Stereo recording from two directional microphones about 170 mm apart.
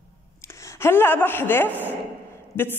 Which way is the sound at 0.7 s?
15° left (ahead or behind).